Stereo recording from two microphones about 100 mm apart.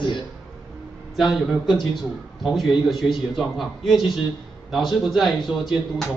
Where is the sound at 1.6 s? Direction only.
50° left (ahead or behind).